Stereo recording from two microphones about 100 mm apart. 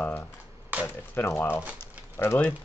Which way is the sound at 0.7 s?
15° right (ahead or behind).